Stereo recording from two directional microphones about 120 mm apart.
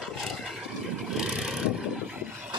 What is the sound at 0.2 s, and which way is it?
Vehicle, centre (ahead or behind).